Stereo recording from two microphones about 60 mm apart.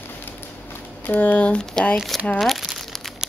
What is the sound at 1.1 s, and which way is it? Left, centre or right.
Speech, left.